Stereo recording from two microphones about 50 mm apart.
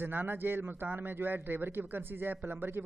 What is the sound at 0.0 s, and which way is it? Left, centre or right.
A man's voice, right.